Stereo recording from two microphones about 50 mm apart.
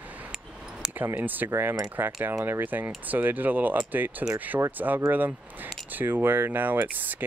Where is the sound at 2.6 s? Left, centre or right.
Right.